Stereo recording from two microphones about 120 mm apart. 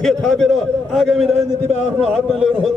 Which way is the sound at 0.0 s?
5° left (ahead or behind).